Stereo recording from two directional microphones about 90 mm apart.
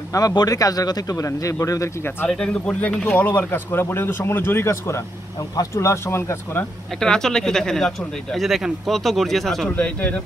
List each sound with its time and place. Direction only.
0.1 s a man's voice: 45° left (ahead or behind)
2.2 s a man's voice: 10° left (ahead or behind); by 6.6 s 30° left (ahead or behind)
7.0 s speech: 5° left (ahead or behind)
9.8 s speech: 15° left (ahead or behind)